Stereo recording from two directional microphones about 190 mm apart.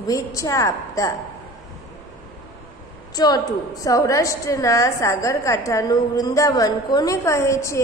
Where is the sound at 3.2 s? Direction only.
20° left (ahead or behind).